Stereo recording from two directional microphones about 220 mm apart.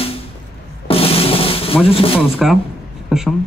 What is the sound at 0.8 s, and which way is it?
Drum, 25° left (ahead or behind).